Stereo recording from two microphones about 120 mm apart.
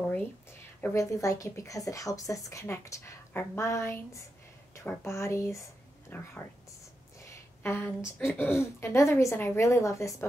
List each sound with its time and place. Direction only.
0.9 s speech: 25° left (ahead or behind)
7.2 s a sound: 20° left (ahead or behind)
8.2 s speech: 20° left (ahead or behind)